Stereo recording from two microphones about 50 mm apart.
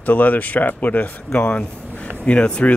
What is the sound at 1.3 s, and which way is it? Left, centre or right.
Speech, left.